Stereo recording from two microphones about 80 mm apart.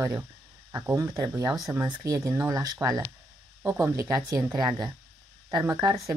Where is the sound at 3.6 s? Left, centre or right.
Right.